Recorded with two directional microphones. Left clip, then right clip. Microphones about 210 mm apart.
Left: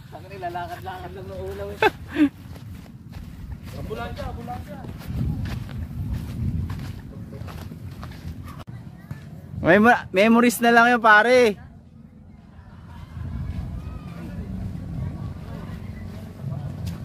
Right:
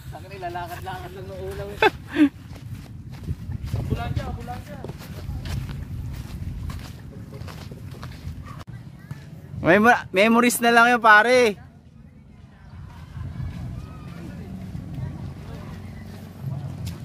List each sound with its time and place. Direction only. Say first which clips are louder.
0.3 s speech: left 1 dB; centre (ahead or behind)
1.8 s speech: right 1 dB; 20° right (ahead or behind)
3.9 s speech: even; 15° left (ahead or behind)
9.6 s speech: even; 5° right (ahead or behind)